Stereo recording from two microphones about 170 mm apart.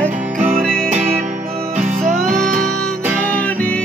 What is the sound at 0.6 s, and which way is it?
Music, 5° left (ahead or behind).